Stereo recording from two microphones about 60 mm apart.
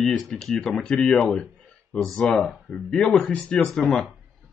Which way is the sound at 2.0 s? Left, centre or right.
Centre.